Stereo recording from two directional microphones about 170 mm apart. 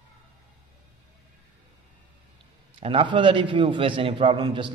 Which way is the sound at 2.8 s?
30° right (ahead or behind).